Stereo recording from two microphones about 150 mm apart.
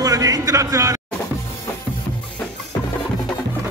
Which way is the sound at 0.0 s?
20° right (ahead or behind).